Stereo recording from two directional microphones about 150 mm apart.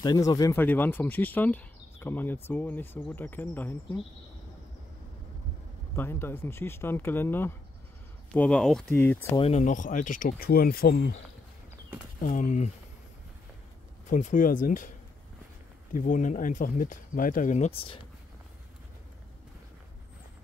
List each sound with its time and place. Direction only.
0.0 s speech: 25° left (ahead or behind)
5.9 s speech: 15° left (ahead or behind)
9.4 s speech: 50° left (ahead or behind); by 11.1 s 85° left
12.2 s speech: 60° left (ahead or behind)
14.0 s speech: 55° left (ahead or behind)
15.9 s speech: 60° left (ahead or behind)